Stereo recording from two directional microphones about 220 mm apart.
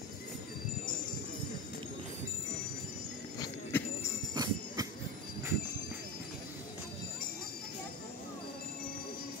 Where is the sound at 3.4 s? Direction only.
10° left (ahead or behind).